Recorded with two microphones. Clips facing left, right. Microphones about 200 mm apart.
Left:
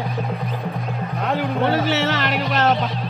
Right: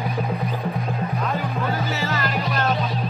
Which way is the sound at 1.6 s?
90° left.